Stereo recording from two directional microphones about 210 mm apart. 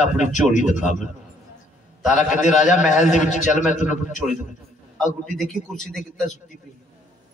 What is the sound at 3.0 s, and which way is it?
A man's voice, 35° left (ahead or behind).